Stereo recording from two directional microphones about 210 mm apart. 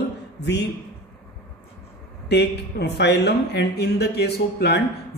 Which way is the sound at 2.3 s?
55° left (ahead or behind).